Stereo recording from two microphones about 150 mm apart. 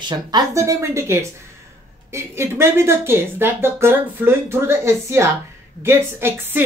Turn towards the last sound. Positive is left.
turn(degrees=-15)  # may be behind; listen again after turning